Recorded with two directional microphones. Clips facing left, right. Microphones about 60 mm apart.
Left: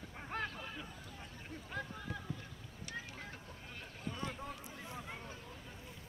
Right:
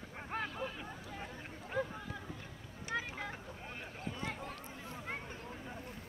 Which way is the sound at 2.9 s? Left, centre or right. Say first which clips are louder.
Right 8 dB; right.